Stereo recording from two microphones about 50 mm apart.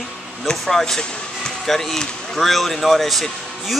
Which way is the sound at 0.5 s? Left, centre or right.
Centre.